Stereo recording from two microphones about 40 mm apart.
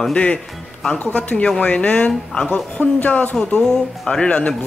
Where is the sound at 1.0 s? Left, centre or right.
Left.